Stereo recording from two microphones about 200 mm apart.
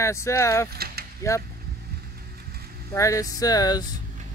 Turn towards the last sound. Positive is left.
turn(degrees=20)  # may be behind; listen again after turning